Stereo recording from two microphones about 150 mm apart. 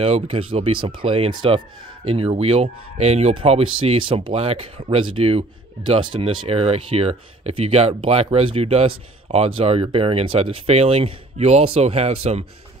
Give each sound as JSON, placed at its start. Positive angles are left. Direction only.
{"t": 0.0, "sound": "speech", "side_deg": -40}